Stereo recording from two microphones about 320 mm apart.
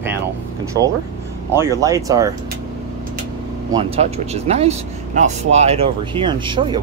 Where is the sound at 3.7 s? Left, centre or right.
Centre.